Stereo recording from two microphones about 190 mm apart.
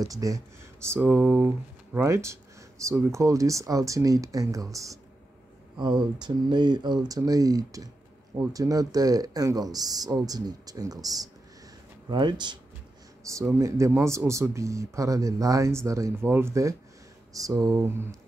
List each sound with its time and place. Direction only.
0.0 s speech: 20° right (ahead or behind)